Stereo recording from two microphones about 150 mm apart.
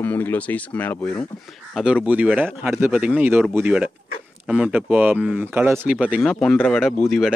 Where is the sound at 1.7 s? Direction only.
5° right (ahead or behind).